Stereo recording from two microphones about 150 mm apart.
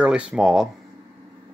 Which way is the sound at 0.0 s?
5° right (ahead or behind).